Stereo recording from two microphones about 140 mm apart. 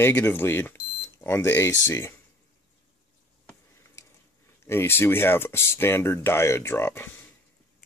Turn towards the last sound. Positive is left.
turn(degrees=15)  # may be behind; listen again after turning